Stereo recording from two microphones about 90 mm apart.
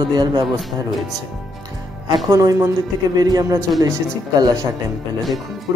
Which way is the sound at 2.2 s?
35° right (ahead or behind).